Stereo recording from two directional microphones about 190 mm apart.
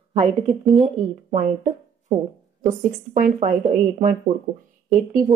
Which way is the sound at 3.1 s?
40° right (ahead or behind).